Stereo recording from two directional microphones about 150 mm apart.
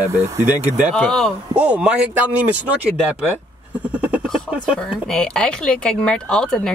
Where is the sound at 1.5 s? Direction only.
10° right (ahead or behind).